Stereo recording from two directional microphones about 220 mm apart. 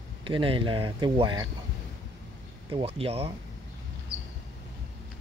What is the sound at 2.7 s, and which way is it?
Speech, 25° right (ahead or behind).